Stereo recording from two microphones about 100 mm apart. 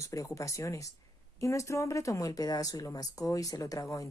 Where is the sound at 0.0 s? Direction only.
35° left (ahead or behind).